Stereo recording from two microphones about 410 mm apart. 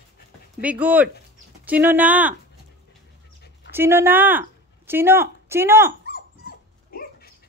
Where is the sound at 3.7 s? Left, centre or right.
Centre.